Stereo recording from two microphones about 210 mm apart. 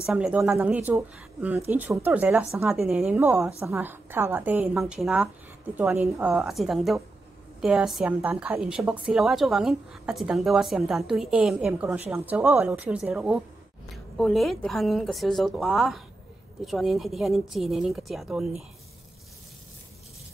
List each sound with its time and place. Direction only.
0.0 s a woman's voice: 5° right (ahead or behind)